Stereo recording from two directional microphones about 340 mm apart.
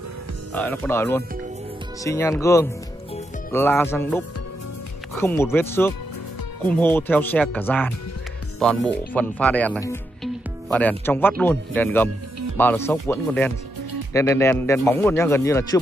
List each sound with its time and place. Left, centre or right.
0.5 s speech: centre